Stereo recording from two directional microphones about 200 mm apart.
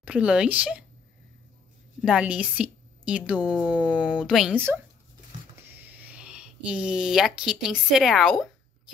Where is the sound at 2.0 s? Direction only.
5° right (ahead or behind).